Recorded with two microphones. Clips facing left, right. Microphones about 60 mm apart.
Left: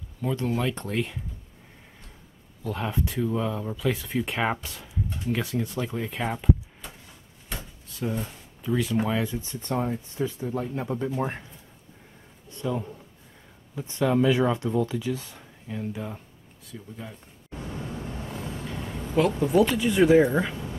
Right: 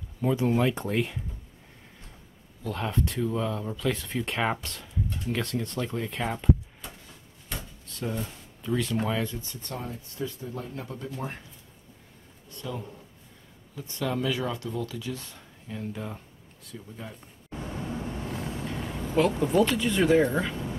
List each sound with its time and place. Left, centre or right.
0.2 s speech: centre
2.6 s speech: centre
7.4 s drawer open or close: centre
9.0 s speech: centre
9.4 s speech: left
12.4 s speech: left; by 17.1 s centre
17.6 s vehicle: centre